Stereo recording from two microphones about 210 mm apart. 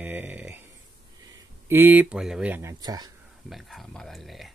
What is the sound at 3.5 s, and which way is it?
Speech, centre (ahead or behind).